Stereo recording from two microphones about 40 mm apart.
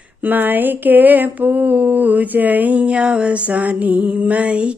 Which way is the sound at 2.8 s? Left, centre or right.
Right.